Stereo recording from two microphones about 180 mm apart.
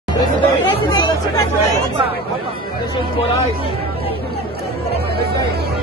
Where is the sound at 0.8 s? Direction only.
20° left (ahead or behind).